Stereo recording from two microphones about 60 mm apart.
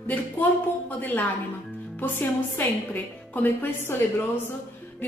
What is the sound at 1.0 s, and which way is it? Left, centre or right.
A woman's voice, left.